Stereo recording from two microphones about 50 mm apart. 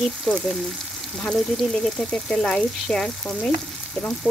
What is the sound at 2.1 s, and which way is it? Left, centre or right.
Frying, centre.